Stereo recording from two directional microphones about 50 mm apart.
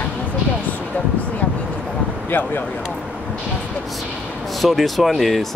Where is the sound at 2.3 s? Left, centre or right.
Left.